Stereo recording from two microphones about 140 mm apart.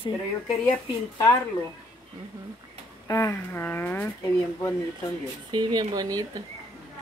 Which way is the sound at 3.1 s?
25° left (ahead or behind).